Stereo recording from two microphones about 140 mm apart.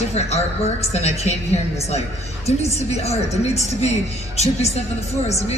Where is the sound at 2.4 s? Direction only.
50° left (ahead or behind).